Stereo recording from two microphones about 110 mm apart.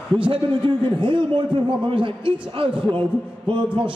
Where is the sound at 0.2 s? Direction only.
50° right (ahead or behind).